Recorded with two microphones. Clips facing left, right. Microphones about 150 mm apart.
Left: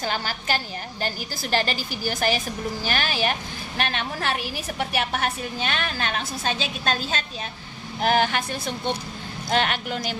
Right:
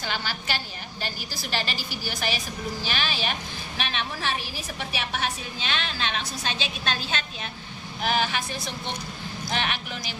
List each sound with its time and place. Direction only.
0.0 s a woman's voice: 45° left (ahead or behind)